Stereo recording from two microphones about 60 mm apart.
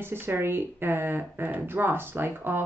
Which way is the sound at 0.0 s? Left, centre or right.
Right.